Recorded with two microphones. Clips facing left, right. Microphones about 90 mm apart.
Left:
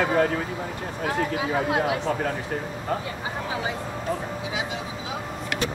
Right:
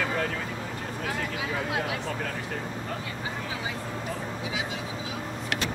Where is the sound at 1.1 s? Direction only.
35° left (ahead or behind).